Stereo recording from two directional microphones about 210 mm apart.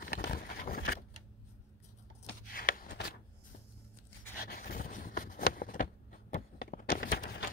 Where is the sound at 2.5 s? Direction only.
40° left (ahead or behind).